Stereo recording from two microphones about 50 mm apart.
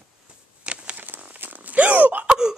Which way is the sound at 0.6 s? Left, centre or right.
Centre.